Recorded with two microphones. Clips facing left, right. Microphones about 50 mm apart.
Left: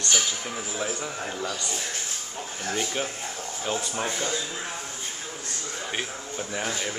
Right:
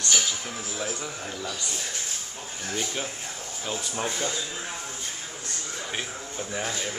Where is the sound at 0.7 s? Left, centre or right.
Centre.